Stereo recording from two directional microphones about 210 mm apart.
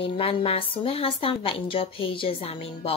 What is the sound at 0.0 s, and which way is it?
Speech, 25° left (ahead or behind).